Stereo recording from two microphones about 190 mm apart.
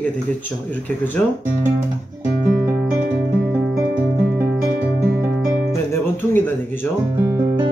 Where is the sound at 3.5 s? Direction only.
10° right (ahead or behind).